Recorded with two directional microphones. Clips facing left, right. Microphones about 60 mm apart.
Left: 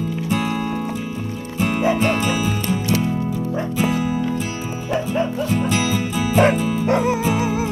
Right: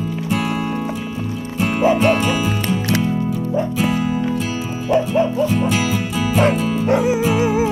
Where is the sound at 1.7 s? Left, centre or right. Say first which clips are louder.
Right 5 dB; right.